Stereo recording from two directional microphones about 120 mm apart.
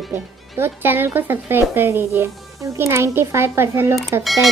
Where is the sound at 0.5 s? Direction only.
20° right (ahead or behind).